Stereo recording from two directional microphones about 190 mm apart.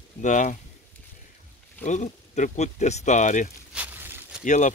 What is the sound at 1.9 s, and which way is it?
Speech, 40° left (ahead or behind).